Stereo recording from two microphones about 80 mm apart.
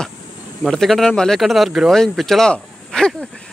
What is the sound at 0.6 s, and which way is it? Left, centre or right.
Speech, centre.